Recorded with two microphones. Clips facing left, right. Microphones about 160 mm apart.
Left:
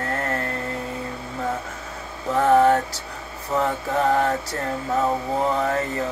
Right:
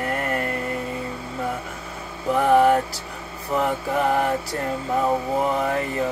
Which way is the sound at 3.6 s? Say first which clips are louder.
Even; 15° right (ahead or behind).